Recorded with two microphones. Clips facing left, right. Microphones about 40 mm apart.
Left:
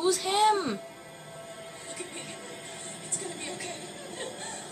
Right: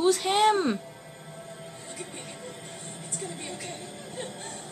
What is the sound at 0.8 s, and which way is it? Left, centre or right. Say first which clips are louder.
Music: even; centre.